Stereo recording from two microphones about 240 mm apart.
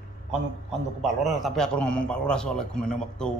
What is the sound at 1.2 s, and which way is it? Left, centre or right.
A man's voice, centre.